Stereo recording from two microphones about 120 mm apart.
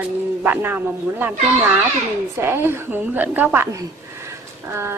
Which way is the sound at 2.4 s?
20° right (ahead or behind).